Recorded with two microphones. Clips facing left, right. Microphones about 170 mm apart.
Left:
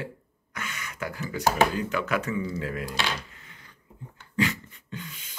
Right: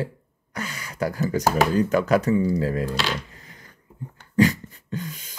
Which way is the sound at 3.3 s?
40° right (ahead or behind).